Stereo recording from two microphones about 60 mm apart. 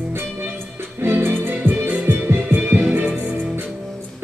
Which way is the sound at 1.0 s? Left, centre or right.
Right.